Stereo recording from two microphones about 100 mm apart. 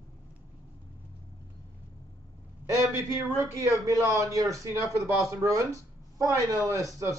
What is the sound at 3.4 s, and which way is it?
Speech, 30° right (ahead or behind).